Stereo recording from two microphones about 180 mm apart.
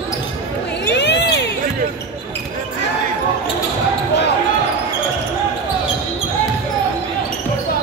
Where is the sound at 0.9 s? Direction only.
70° left (ahead or behind).